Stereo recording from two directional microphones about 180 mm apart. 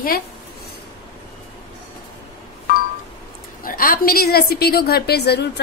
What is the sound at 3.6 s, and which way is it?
A woman's voice, 50° left (ahead or behind).